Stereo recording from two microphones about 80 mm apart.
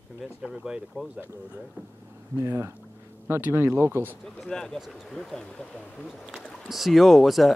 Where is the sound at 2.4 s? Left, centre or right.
Right.